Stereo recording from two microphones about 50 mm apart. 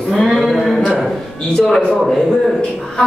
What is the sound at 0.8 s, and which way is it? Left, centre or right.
Speech, centre.